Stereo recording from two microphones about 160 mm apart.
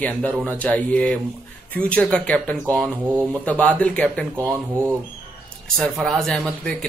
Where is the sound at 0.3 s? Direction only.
10° right (ahead or behind).